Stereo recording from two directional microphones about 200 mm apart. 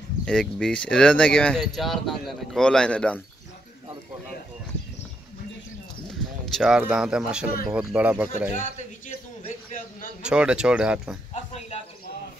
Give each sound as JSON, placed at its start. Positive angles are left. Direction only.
{"t": 0.2, "sound": "speech", "side_deg": 5}
{"t": 6.0, "sound": "speech", "side_deg": 0}
{"t": 8.5, "sound": "a sound", "side_deg": 40}
{"t": 10.2, "sound": "speech", "side_deg": -5}